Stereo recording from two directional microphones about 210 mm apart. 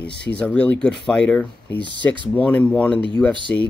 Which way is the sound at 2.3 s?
5° left (ahead or behind).